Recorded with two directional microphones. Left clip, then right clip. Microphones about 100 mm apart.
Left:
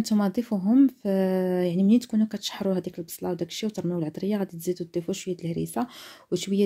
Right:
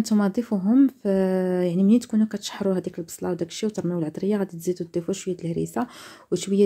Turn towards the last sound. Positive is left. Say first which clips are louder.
# right 3 dB
turn(degrees=20)  # may be behind; listen again after turning